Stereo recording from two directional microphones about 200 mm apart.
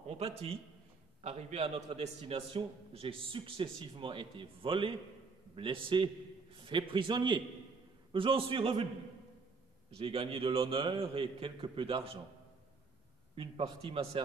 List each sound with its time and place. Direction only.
0.1 s a man's voice: 30° right (ahead or behind)
9.8 s a man's voice: 30° right (ahead or behind)
13.4 s a man's voice: 25° right (ahead or behind)